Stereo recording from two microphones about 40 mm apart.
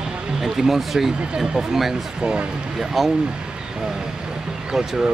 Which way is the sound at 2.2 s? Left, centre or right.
Right.